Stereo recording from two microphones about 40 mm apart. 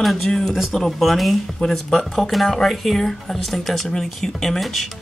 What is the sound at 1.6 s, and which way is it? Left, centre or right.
Speech, left.